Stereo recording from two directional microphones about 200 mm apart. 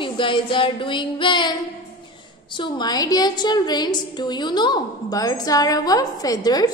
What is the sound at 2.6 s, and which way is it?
A woman's voice, 20° left (ahead or behind).